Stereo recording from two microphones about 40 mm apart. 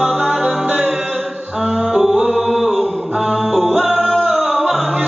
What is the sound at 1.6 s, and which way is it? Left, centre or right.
Music, centre.